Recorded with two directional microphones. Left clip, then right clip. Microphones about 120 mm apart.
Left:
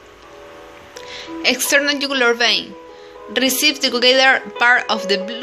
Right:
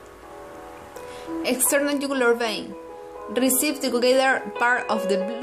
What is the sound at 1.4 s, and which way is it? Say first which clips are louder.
Speech: left 7 dB; centre (ahead or behind).